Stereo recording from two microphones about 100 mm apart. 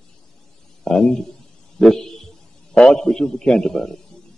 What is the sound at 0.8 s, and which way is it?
A man's voice, 5° left (ahead or behind).